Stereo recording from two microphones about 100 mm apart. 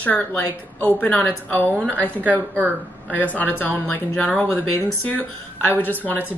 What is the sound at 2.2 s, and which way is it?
Speech, 15° right (ahead or behind).